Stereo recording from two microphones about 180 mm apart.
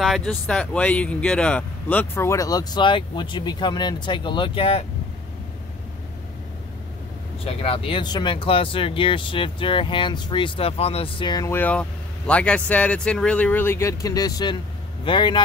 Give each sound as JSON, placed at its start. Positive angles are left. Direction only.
{"t": 0.0, "sound": "speech", "side_deg": 0}
{"t": 7.4, "sound": "speech", "side_deg": 30}
{"t": 11.5, "sound": "speech", "side_deg": 10}